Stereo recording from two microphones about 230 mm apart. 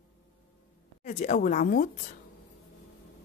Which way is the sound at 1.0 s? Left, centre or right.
Left.